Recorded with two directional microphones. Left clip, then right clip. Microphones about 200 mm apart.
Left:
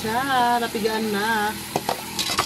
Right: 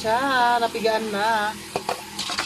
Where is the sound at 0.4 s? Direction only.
15° right (ahead or behind).